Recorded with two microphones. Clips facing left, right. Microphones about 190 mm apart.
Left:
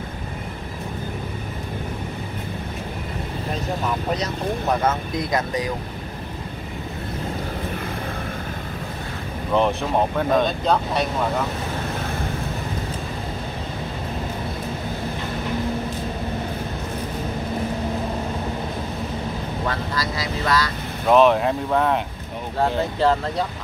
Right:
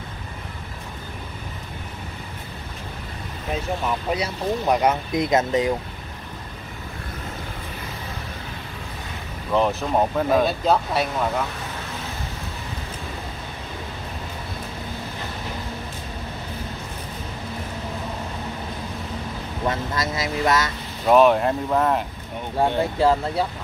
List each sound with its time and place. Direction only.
4.1 s speech: 10° right (ahead or behind)
9.5 s speech: centre (ahead or behind)
19.7 s speech: 25° right (ahead or behind)
21.1 s speech: 5° right (ahead or behind)